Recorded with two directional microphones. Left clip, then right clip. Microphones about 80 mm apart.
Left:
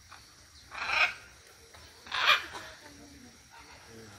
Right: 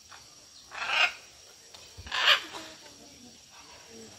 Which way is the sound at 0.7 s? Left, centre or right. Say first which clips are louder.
Right 1 dB; centre.